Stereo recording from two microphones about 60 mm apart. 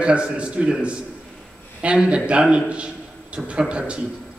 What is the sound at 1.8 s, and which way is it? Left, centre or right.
A man's voice, centre.